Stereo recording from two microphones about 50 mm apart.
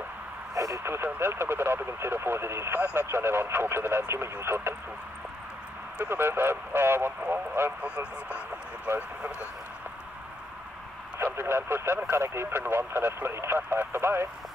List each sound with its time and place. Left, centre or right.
0.8 s speech: right
2.8 s speech: right
3.1 s speech: right
6.0 s speech: right
7.8 s speech: right
8.9 s speech: right
11.1 s speech: right